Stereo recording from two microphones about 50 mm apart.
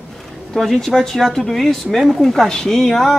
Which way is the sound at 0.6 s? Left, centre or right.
Centre.